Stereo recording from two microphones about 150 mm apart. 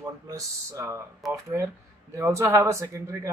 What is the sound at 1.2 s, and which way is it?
Speech, centre (ahead or behind).